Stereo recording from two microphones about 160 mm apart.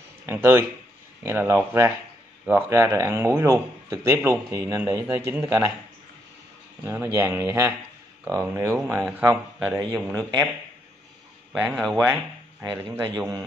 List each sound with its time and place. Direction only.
0.3 s speech: 15° right (ahead or behind)
6.8 s speech: 15° right (ahead or behind)
9.9 s speech: centre (ahead or behind)
11.5 s speech: 5° right (ahead or behind)